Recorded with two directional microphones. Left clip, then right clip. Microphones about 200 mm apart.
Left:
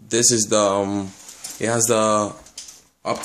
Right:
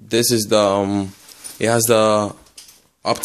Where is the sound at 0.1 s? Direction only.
30° right (ahead or behind).